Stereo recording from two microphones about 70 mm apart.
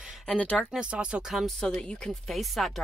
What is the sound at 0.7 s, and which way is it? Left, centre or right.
Speech, centre.